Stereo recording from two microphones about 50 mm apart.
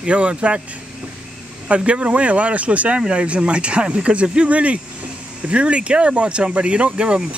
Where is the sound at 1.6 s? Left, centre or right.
Right.